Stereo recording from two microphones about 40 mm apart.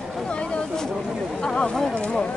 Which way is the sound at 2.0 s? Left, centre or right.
Left.